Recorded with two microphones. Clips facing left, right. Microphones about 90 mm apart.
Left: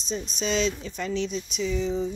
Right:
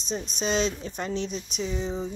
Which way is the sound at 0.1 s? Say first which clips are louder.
Even; 45° right (ahead or behind).